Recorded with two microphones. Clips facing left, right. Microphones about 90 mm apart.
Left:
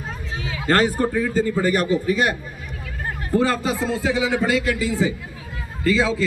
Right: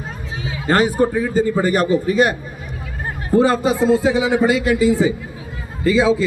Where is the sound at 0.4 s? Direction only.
15° right (ahead or behind).